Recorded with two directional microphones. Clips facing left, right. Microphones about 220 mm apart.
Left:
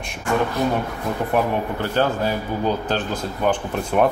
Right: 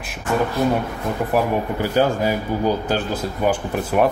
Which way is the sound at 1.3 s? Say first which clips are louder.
Right 1 dB; 10° right (ahead or behind).